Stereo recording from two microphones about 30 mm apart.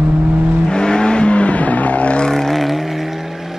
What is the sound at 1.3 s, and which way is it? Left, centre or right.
Vehicle, left.